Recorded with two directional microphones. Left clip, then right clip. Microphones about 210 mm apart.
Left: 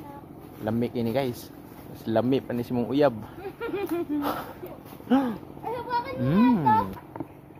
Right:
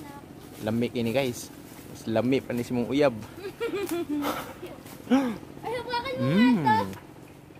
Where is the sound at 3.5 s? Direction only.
60° right (ahead or behind).